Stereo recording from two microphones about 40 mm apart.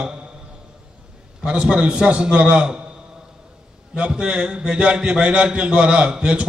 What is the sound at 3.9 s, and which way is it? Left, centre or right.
A man's voice, right.